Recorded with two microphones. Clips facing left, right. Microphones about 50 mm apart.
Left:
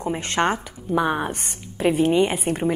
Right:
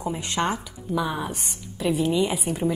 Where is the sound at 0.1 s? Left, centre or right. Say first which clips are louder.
Left 5 dB; left.